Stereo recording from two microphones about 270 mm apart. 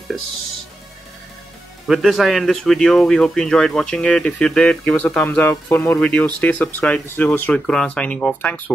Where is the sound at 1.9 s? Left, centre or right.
Centre.